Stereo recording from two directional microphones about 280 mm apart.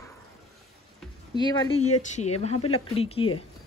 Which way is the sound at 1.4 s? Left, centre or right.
Centre.